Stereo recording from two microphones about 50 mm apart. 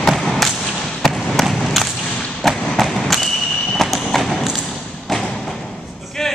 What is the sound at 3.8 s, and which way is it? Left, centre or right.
Clip-clop, centre.